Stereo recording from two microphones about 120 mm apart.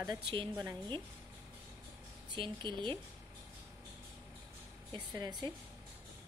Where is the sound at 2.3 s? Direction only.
40° right (ahead or behind).